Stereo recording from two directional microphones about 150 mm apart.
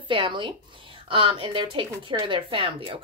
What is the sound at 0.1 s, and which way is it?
A woman's voice, 35° right (ahead or behind).